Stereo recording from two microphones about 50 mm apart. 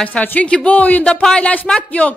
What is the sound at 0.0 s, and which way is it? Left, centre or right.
A woman's voice, left.